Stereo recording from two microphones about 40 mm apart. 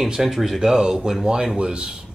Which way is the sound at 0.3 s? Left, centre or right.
Centre.